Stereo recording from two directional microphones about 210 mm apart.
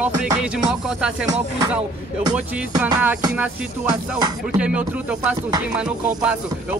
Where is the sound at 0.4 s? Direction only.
5° right (ahead or behind).